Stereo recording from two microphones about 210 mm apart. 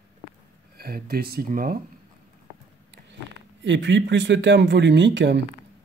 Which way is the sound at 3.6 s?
60° right (ahead or behind).